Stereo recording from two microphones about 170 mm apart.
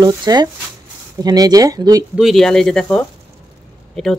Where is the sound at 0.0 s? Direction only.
25° right (ahead or behind).